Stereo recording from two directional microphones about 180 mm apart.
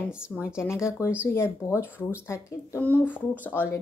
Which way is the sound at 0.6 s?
15° left (ahead or behind).